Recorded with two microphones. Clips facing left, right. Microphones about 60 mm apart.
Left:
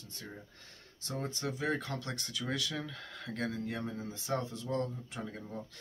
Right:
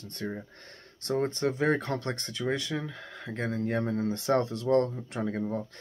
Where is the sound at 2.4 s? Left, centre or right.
Right.